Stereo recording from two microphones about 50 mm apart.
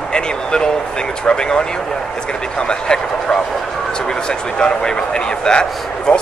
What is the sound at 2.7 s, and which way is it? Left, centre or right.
Speech, centre.